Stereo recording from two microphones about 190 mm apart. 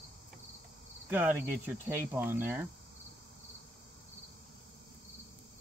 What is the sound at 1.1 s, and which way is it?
Cricket, 10° right (ahead or behind).